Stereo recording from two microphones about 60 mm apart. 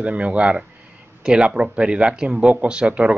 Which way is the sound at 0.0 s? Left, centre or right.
Right.